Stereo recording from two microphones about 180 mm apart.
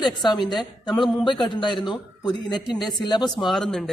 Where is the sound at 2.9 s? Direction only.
25° left (ahead or behind).